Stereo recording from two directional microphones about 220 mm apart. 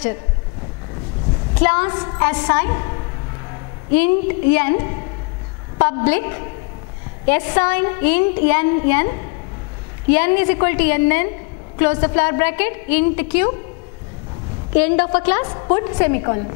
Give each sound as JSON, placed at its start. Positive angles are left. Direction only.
{"t": 1.6, "sound": "a woman's voice", "side_deg": 10}
{"t": 14.8, "sound": "a woman's voice", "side_deg": 10}
{"t": 15.4, "sound": "a woman's voice", "side_deg": 20}